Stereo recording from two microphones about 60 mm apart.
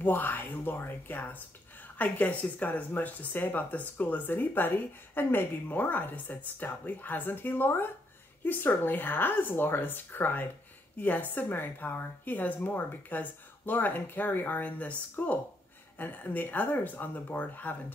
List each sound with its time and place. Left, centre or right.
0.1 s speech: left